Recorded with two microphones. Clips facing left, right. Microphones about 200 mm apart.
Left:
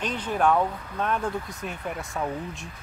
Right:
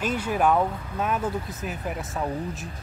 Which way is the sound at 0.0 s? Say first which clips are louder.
Right 1 dB; 10° right (ahead or behind).